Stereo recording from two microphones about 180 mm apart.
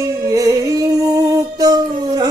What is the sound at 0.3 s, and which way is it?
Singing, 20° right (ahead or behind).